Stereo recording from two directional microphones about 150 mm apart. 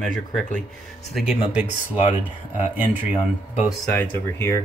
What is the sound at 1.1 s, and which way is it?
Speech, 10° right (ahead or behind).